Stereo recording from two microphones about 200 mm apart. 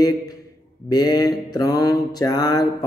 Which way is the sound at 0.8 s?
20° left (ahead or behind).